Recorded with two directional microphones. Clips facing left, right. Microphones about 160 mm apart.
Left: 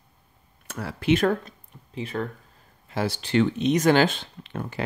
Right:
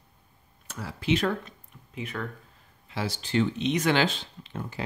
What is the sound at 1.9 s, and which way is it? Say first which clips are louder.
Speech: left 5 dB; 30° left (ahead or behind).